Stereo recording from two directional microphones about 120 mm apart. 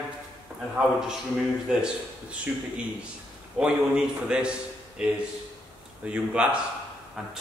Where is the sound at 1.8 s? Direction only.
10° right (ahead or behind).